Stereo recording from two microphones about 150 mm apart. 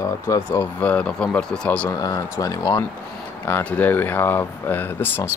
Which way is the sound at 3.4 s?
15° left (ahead or behind).